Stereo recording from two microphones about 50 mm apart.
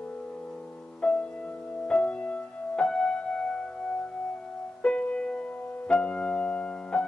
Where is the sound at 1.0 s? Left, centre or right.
Left.